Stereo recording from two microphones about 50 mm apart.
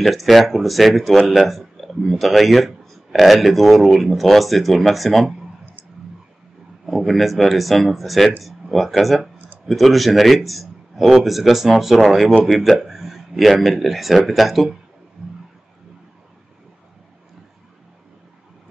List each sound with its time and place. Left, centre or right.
0.0 s a man's voice: centre
6.9 s a man's voice: centre